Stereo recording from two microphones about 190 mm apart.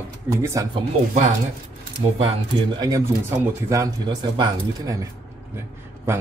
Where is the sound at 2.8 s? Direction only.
15° right (ahead or behind).